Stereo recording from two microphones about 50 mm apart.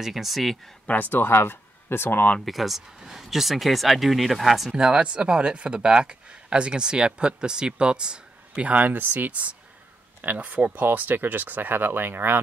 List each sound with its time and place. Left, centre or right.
0.0 s speech: centre
1.1 s speech: left
2.4 s speech: centre
4.7 s speech: centre
8.6 s speech: right